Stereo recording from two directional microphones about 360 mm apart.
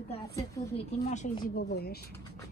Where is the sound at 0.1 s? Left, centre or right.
Centre.